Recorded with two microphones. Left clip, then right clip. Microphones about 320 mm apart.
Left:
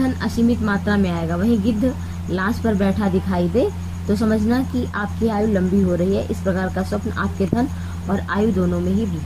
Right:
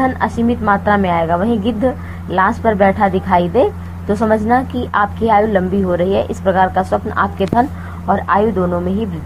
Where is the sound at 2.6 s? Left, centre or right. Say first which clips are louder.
Right 9 dB; right.